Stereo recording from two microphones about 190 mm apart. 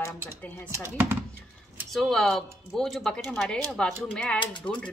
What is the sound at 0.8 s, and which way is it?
Speech, 10° right (ahead or behind).